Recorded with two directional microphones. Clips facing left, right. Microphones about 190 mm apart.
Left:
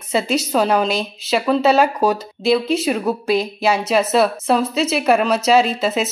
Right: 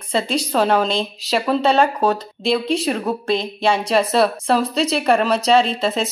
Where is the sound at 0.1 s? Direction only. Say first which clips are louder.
Left 2 dB; 5° left (ahead or behind).